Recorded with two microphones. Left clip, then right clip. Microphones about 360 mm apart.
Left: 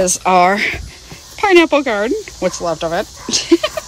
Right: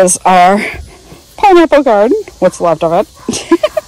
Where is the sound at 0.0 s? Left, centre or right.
Centre.